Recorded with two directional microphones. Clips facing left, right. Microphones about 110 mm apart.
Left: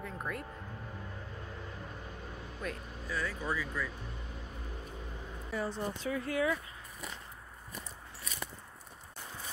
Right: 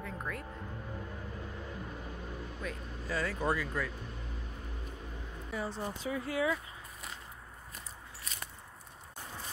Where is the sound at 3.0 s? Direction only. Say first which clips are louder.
Right 4 dB; 75° right (ahead or behind).